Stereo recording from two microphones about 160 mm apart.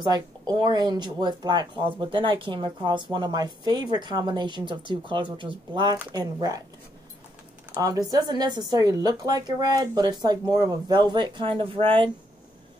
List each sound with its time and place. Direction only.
0.0 s speech: 25° right (ahead or behind)
7.7 s speech: 20° right (ahead or behind)